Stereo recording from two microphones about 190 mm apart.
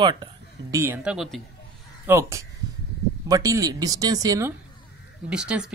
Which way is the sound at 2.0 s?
15° right (ahead or behind).